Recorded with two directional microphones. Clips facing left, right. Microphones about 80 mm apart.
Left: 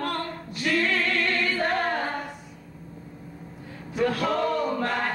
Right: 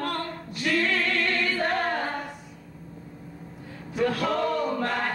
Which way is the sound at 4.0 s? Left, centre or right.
Left.